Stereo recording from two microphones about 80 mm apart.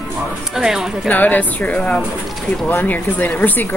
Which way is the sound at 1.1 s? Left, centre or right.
Left.